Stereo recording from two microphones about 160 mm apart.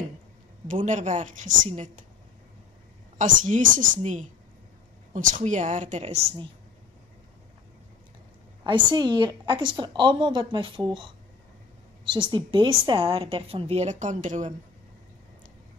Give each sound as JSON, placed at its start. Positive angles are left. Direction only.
{"t": 0.7, "sound": "a woman's voice", "side_deg": -50}
{"t": 3.2, "sound": "a woman's voice", "side_deg": -50}
{"t": 8.6, "sound": "a woman's voice", "side_deg": -30}